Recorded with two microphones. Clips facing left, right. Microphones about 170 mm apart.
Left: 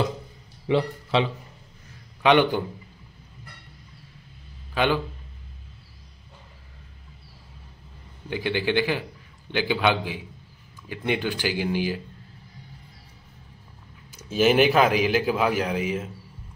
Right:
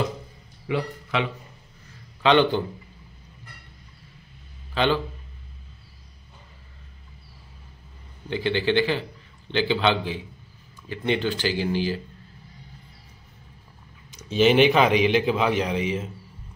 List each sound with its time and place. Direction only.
0.7 s a man's voice: 30° left (ahead or behind)
2.2 s speech: 10° left (ahead or behind)
4.7 s speech: 10° left (ahead or behind)
8.3 s speech: 10° left (ahead or behind)
14.1 s a man's voice: 5° left (ahead or behind)